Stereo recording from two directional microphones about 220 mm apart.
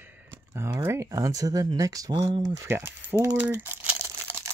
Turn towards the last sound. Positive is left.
turn(degrees=-10)  # may be behind; listen again after turning